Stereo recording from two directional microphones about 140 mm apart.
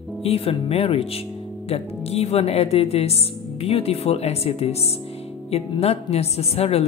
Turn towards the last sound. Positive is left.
turn(degrees=45)  # may be behind; listen again after turning